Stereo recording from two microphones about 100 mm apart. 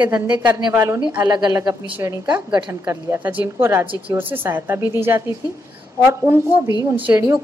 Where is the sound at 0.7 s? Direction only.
30° right (ahead or behind).